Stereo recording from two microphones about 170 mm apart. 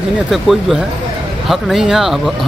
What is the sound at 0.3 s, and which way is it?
Speech, centre (ahead or behind).